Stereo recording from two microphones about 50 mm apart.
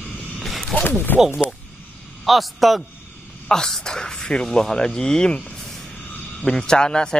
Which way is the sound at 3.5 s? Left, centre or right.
Centre.